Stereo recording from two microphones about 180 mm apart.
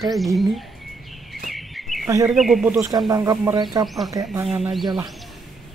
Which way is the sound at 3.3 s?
5° right (ahead or behind).